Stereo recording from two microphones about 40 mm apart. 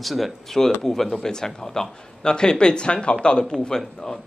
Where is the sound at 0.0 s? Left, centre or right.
Centre.